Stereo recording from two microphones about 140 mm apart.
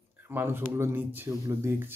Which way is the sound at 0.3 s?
15° right (ahead or behind).